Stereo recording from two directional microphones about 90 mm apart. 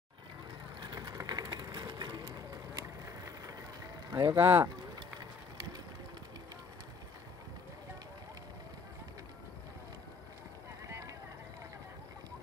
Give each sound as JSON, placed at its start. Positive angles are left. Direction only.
{"t": 0.7, "sound": "sewing machine", "side_deg": -55}
{"t": 1.1, "sound": "a sound", "side_deg": -50}
{"t": 3.1, "sound": "vehicle", "side_deg": -35}
{"t": 4.1, "sound": "speech", "side_deg": -40}
{"t": 4.4, "sound": "speech", "side_deg": -25}
{"t": 10.9, "sound": "clip-clop", "side_deg": -35}